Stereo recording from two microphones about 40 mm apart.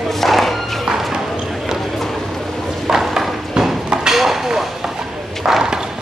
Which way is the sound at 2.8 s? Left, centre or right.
Centre.